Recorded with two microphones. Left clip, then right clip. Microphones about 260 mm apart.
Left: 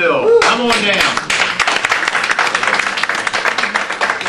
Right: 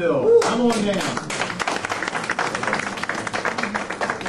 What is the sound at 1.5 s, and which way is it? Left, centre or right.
Applause, centre.